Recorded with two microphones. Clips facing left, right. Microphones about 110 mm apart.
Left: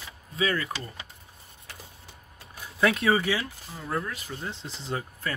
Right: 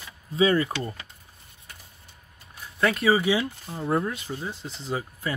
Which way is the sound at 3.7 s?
25° right (ahead or behind).